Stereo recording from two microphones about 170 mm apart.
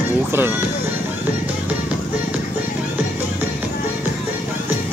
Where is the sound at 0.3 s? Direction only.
15° right (ahead or behind).